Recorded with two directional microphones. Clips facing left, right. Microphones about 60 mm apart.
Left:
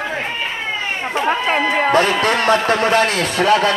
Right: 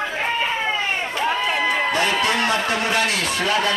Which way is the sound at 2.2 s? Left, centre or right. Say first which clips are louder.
Left 5 dB; left.